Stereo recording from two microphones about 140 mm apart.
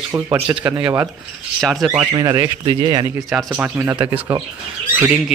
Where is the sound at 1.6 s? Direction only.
Centre (ahead or behind).